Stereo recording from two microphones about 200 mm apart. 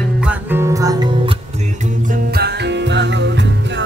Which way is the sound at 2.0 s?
45° right (ahead or behind).